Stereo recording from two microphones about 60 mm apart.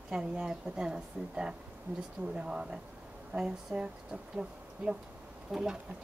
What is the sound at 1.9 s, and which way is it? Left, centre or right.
Speech, right.